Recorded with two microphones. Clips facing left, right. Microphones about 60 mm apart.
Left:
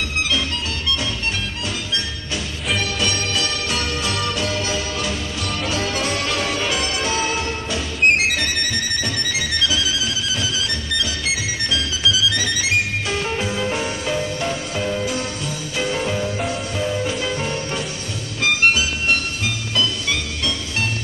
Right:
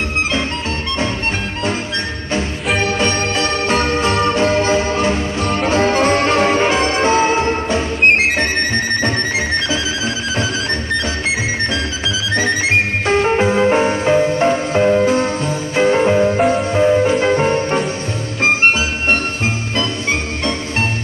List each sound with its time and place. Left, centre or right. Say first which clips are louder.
2.8 s music: right 6 dB; right
11.0 s music: right 5 dB; right